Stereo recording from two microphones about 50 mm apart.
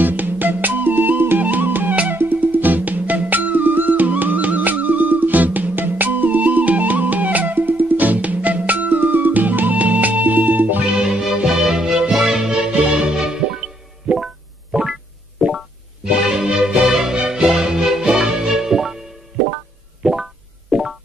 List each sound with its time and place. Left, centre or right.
0.0 s music: right
11.0 s music: centre
14.1 s music: centre
16.0 s music: centre
20.0 s music: centre